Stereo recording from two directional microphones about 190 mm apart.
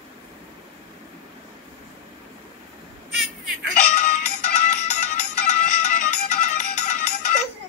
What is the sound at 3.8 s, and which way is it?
Music, 40° left (ahead or behind).